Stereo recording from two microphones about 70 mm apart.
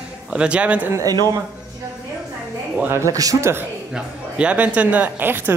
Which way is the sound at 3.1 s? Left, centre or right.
Right.